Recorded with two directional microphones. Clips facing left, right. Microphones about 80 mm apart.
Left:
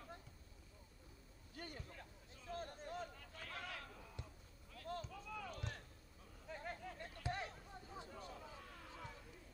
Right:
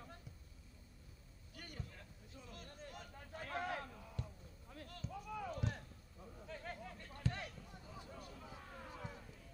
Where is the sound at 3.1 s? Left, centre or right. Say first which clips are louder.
Right 7 dB; right.